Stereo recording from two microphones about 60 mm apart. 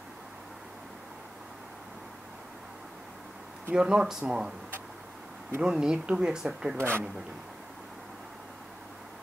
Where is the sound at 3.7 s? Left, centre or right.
Centre.